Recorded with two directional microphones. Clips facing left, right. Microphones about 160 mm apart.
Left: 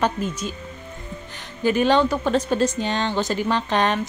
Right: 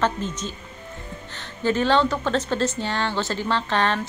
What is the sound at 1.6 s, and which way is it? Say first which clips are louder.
Speech: left 2 dB; 15° left (ahead or behind).